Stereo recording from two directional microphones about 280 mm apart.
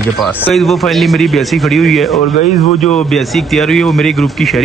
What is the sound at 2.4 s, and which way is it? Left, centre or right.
Speech, left.